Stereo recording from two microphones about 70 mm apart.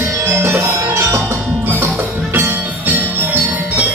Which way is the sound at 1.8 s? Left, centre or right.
Right.